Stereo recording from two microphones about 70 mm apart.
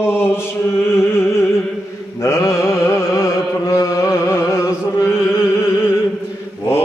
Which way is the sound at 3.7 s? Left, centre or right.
Left.